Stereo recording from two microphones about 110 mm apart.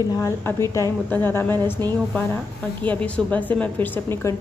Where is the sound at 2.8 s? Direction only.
10° left (ahead or behind).